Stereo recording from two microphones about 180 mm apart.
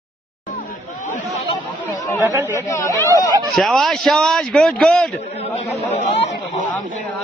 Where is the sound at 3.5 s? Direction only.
Centre (ahead or behind).